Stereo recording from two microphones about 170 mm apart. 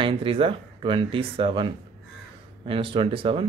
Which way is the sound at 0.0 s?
30° right (ahead or behind).